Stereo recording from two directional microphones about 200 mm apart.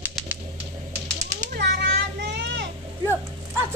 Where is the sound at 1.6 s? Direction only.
55° right (ahead or behind).